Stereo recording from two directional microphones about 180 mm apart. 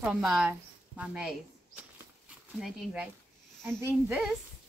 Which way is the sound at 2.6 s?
5° right (ahead or behind).